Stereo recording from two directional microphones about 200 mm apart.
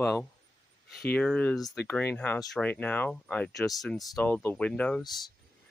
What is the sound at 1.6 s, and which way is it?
Speech, 20° left (ahead or behind).